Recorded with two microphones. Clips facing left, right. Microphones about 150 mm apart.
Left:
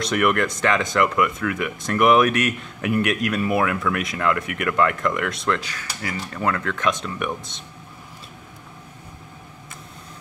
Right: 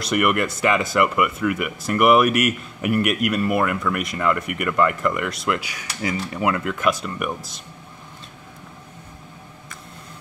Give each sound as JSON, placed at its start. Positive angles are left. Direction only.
{"t": 0.0, "sound": "speech", "side_deg": -5}